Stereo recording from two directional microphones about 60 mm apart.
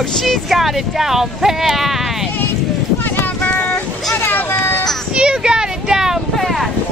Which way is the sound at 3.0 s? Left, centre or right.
Left.